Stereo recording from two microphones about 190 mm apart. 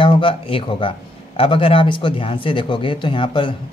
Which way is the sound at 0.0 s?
25° left (ahead or behind).